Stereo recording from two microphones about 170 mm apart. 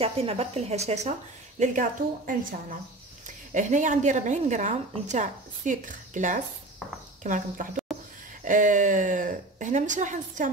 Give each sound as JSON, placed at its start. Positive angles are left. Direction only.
{"t": 0.0, "sound": "speech", "side_deg": -35}